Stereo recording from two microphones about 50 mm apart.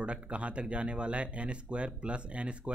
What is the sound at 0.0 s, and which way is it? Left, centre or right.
Speech, right.